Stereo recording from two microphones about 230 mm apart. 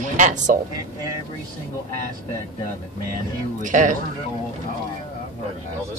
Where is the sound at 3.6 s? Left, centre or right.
Right.